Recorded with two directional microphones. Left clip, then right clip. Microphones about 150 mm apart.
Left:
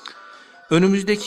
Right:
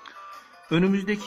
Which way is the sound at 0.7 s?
40° left (ahead or behind).